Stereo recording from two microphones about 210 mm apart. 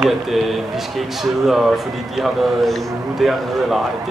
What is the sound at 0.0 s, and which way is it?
A man's voice, centre (ahead or behind).